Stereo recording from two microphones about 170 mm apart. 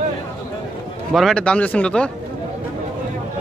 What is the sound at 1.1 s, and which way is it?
A man's voice, centre (ahead or behind).